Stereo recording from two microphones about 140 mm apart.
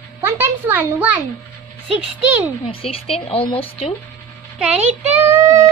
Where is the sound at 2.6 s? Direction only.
40° left (ahead or behind).